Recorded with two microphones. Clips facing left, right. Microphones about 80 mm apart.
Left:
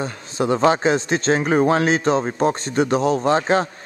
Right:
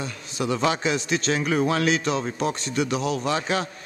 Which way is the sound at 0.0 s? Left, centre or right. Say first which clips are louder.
Left 6 dB; left.